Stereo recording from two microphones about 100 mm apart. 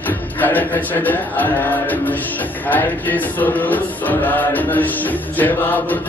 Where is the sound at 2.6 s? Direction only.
20° left (ahead or behind).